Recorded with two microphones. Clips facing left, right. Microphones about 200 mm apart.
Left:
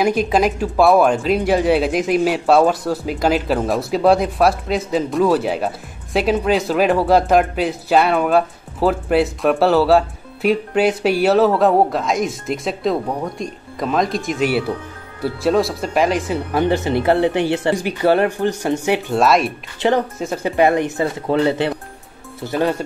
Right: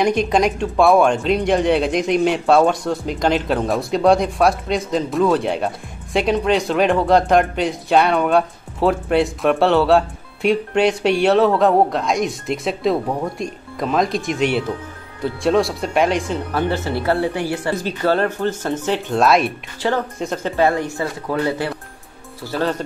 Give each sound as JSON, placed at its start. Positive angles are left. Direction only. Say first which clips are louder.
{"t": 0.0, "sound": "speech", "louder": "even", "side_deg": 5}
{"t": 16.5, "sound": "speech", "louder": "left 5 dB", "side_deg": 15}
{"t": 19.1, "sound": "speech", "louder": "right 1 dB", "side_deg": 0}
{"t": 19.8, "sound": "speech", "louder": "left 4 dB", "side_deg": 20}
{"t": 20.2, "sound": "speech", "louder": "left 1 dB", "side_deg": 5}
{"t": 20.5, "sound": "speech", "louder": "left 3 dB", "side_deg": 20}